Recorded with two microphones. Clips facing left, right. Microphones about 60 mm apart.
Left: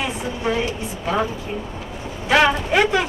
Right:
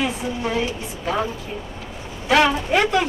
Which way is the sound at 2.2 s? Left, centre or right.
Centre.